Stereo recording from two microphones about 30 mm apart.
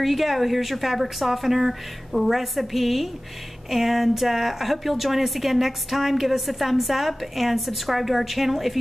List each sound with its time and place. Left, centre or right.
0.0 s a woman's voice: centre